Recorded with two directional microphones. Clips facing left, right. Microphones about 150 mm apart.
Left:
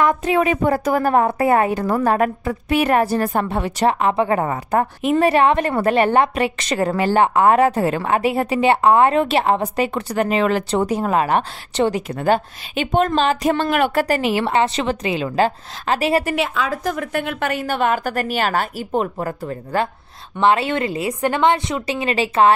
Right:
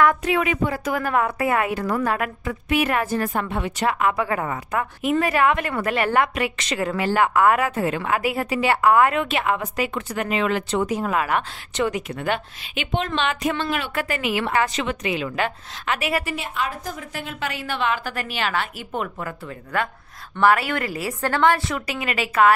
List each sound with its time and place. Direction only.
0.0 s a woman's voice: 25° left (ahead or behind)
16.3 s a woman's voice: 90° left; by 19.9 s 35° left (ahead or behind)
20.3 s a woman's voice: 25° left (ahead or behind)